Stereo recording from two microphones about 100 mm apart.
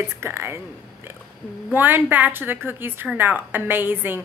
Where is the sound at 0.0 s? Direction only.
25° right (ahead or behind).